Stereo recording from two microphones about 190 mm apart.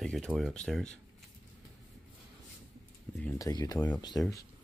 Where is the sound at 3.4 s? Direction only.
20° left (ahead or behind).